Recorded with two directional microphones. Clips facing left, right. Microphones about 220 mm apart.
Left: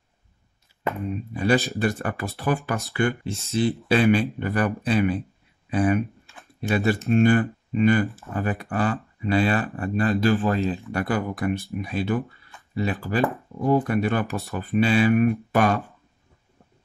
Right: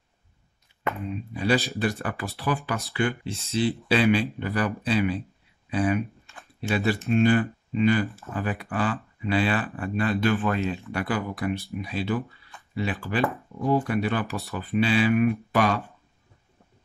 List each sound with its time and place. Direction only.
1.1 s speech: 45° left (ahead or behind)
10.2 s speech: 30° left (ahead or behind)
10.9 s speech: 45° left (ahead or behind)